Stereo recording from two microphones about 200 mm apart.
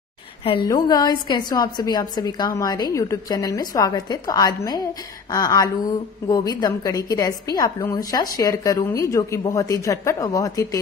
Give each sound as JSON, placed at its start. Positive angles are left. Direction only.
{"t": 0.4, "sound": "a woman's voice", "side_deg": 25}